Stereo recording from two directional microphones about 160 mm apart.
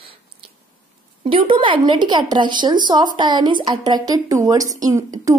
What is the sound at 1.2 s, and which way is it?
A woman's voice, 30° right (ahead or behind).